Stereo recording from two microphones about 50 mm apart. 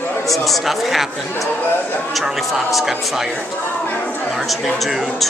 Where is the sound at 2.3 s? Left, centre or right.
Centre.